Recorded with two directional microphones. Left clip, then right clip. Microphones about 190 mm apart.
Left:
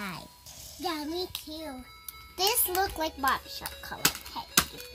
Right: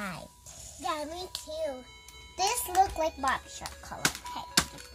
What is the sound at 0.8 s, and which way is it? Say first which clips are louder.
Speech: right 1 dB; 30° right (ahead or behind).